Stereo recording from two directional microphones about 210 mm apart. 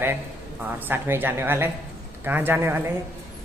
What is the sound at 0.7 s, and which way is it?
A man's voice, 10° right (ahead or behind).